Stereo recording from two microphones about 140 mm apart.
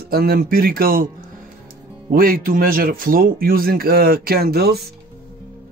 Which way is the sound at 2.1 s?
90° right.